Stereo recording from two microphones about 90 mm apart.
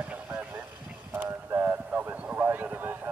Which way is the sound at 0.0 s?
15° right (ahead or behind).